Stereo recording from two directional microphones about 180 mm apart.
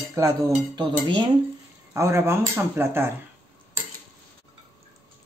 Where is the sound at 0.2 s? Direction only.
15° right (ahead or behind).